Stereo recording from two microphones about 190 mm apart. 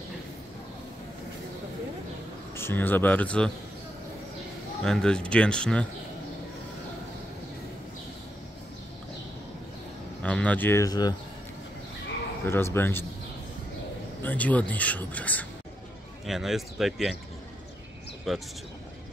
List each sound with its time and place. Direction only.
2.5 s speech: 10° left (ahead or behind)
4.8 s speech: 5° left (ahead or behind)
10.2 s speech: 5° left (ahead or behind)
12.4 s speech: 10° left (ahead or behind)
14.2 s speech: 10° left (ahead or behind)
18.3 s speech: centre (ahead or behind)